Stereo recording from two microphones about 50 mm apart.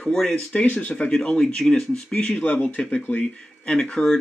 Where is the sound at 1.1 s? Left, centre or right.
Centre.